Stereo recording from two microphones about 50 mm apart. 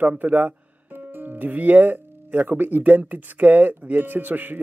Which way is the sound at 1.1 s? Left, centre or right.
Right.